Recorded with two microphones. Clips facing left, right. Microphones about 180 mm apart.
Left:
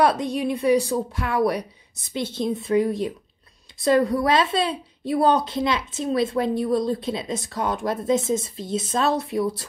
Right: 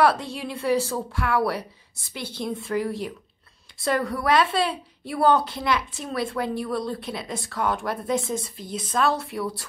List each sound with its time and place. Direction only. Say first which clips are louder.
0.0 s a woman's voice: left 2 dB; 20° left (ahead or behind)